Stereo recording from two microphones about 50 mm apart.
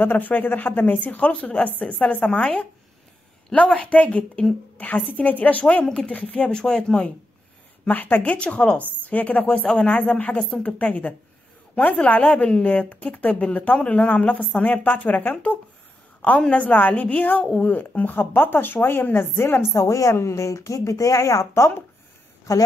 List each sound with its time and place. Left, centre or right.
0.0 s a woman's voice: left
3.6 s a woman's voice: left
6.5 s speech: centre
7.9 s a woman's voice: left
8.4 s a woman's voice: left
9.0 s a woman's voice: left
12.6 s a woman's voice: left
18.2 s speech: left
19.7 s a woman's voice: left